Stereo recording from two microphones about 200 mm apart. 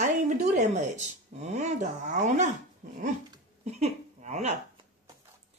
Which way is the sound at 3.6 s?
35° right (ahead or behind).